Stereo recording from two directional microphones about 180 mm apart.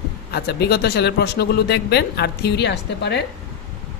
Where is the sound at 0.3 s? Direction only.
65° left (ahead or behind).